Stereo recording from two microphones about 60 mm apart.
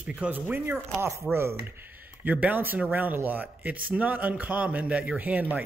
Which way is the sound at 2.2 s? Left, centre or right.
Right.